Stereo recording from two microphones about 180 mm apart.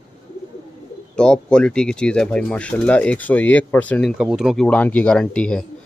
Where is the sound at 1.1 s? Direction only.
5° left (ahead or behind).